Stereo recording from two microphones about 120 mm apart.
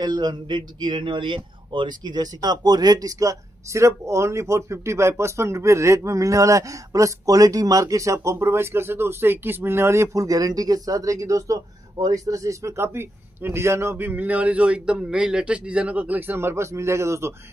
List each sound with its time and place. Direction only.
0.0 s a man's voice: 35° right (ahead or behind)